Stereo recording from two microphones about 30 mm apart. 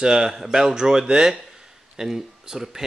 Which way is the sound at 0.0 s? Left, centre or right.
Right.